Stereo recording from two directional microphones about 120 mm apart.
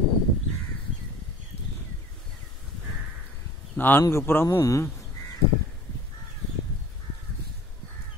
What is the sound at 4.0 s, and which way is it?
Speech, 20° left (ahead or behind).